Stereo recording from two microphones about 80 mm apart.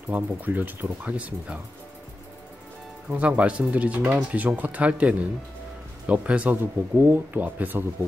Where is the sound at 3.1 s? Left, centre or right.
Centre.